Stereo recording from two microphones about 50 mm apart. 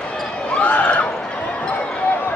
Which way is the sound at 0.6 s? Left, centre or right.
Left.